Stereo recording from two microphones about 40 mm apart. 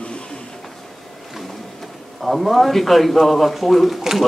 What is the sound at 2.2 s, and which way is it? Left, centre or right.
Speech, centre.